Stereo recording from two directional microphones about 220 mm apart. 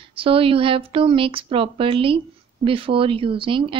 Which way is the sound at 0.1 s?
25° right (ahead or behind).